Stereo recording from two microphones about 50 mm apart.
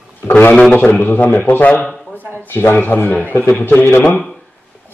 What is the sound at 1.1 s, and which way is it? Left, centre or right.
Speech, left.